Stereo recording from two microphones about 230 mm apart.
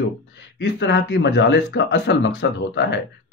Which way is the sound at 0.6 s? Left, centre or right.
Left.